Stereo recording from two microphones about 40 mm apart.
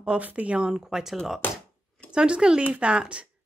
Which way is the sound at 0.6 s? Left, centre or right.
Centre.